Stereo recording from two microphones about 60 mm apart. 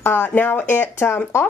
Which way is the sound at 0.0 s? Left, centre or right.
Left.